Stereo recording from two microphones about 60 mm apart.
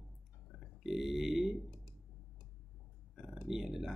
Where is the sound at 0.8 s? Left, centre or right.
Centre.